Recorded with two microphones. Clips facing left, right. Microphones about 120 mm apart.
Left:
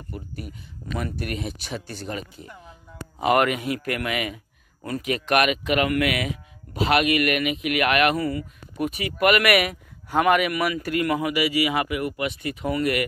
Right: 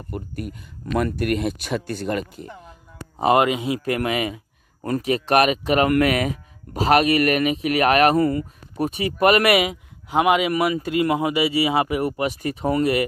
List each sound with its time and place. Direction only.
0.1 s speech: 55° right (ahead or behind)
3.2 s speech: 25° right (ahead or behind); by 8.5 s 45° right (ahead or behind)
8.7 s speech: 30° right (ahead or behind)